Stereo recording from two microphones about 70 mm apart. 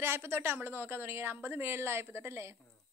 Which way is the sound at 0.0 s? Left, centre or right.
Right.